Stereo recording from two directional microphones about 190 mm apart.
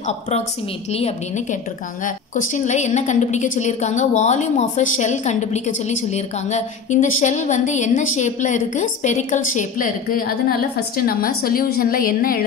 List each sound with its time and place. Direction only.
0.0 s a woman's voice: 35° left (ahead or behind)